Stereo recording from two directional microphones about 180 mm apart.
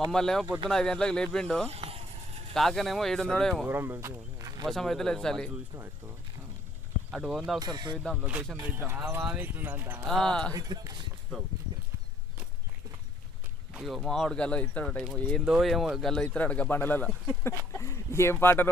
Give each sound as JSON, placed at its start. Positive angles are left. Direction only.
{"t": 0.1, "sound": "speech", "side_deg": 0}
{"t": 1.7, "sound": "vehicle", "side_deg": -35}
{"t": 2.5, "sound": "speech", "side_deg": 0}
{"t": 3.6, "sound": "speech", "side_deg": -15}
{"t": 4.6, "sound": "speech", "side_deg": 0}
{"t": 7.1, "sound": "speech", "side_deg": 0}
{"t": 7.5, "sound": "speech", "side_deg": -25}
{"t": 8.0, "sound": "speech", "side_deg": 0}
{"t": 10.0, "sound": "speech", "side_deg": 0}
{"t": 10.5, "sound": "speech", "side_deg": -20}
{"t": 13.7, "sound": "speech", "side_deg": 0}